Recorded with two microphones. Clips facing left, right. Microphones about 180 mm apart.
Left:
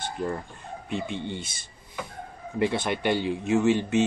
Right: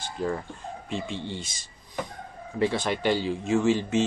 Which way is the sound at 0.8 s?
60° left (ahead or behind).